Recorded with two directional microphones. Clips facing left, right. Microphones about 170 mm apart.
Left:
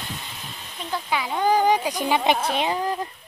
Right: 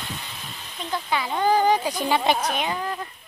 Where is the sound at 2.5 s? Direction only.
30° left (ahead or behind).